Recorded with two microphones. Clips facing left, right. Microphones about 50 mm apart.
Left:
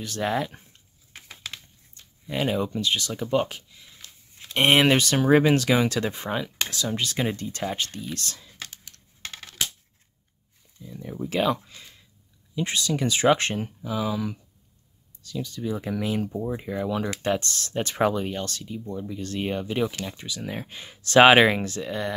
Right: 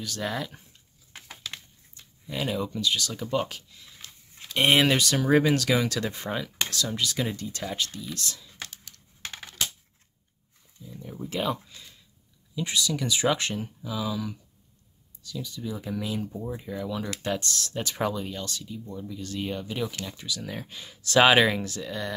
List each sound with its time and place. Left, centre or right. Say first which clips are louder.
0.0 s speech: left 5 dB; left
2.2 s speech: left 4 dB; left
9.3 s coin: even; centre
11.0 s speech: left 5 dB; left
12.5 s speech: left 2 dB; left
15.2 s speech: left 5 dB; left
19.9 s speech: left 1 dB; left